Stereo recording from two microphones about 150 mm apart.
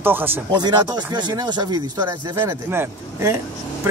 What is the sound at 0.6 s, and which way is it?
Speech, 30° right (ahead or behind).